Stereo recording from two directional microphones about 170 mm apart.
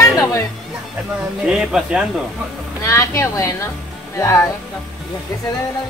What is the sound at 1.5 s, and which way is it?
Speech, 5° right (ahead or behind).